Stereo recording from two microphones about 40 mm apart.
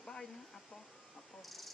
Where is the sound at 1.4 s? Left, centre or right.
Centre.